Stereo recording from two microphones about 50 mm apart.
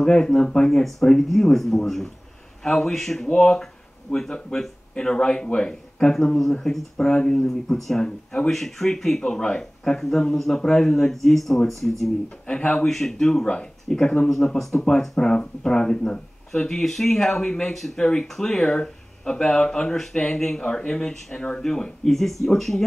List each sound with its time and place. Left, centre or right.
0.0 s speech: centre
12.4 s speech: centre
12.8 s speech: centre